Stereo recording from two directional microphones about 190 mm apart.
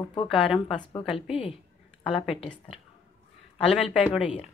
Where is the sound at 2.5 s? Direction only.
Centre (ahead or behind).